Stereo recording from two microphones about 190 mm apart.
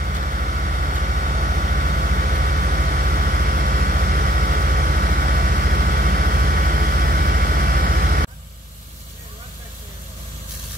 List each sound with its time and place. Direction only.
0.0 s vehicle: 45° right (ahead or behind)